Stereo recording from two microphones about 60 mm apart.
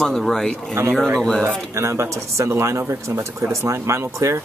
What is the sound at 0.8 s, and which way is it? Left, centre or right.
Speech, right.